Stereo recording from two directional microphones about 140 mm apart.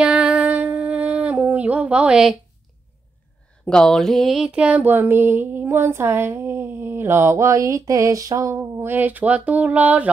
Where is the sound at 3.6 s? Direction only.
5° left (ahead or behind).